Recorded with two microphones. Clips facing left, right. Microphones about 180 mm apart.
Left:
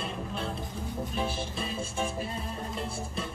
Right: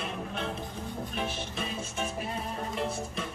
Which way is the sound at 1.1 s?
30° left (ahead or behind).